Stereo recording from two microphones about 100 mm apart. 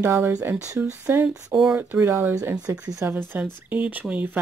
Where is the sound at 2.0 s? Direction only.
25° right (ahead or behind).